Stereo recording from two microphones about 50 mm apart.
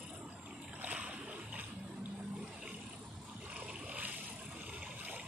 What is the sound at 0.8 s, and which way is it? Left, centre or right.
Boat, right.